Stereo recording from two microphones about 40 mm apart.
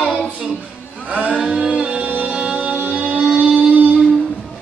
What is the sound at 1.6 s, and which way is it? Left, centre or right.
Music, right.